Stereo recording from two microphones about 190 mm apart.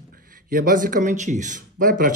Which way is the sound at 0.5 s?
45° right (ahead or behind).